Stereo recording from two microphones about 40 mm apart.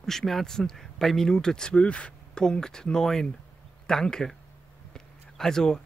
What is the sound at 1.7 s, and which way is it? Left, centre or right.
Speech, left.